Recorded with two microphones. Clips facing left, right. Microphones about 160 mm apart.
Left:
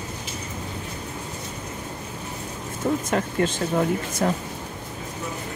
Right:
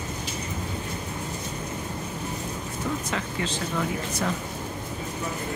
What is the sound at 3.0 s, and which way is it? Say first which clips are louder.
Speech: left 7 dB; 50° left (ahead or behind).